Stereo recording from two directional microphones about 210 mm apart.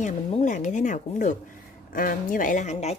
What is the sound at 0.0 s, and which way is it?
A woman's voice, 35° left (ahead or behind).